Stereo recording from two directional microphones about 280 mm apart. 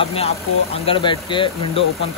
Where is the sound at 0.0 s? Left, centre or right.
Left.